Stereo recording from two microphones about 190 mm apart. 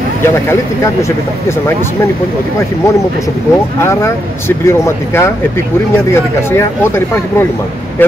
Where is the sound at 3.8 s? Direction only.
15° left (ahead or behind).